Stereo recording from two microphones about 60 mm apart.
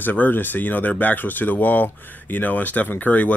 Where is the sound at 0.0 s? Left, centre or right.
Left.